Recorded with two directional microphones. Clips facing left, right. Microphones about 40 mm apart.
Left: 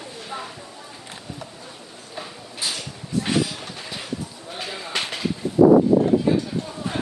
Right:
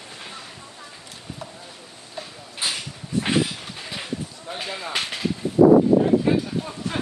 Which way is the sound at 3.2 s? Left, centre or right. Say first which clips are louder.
Right 1 dB; right.